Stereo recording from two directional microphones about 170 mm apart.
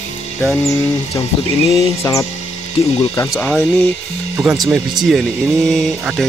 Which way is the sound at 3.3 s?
5° left (ahead or behind).